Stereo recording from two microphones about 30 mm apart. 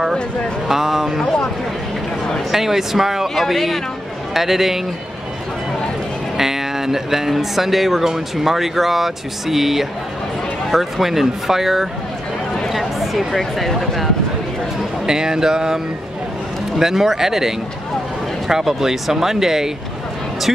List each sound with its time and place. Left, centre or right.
0.7 s speech: centre
2.5 s speech: centre
3.3 s speech: centre
6.3 s speech: centre
12.6 s a sound: centre
13.3 s speech: centre
15.0 s a sound: right
16.7 s speech: centre